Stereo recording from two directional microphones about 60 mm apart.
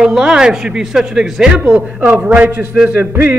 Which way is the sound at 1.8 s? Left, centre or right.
Right.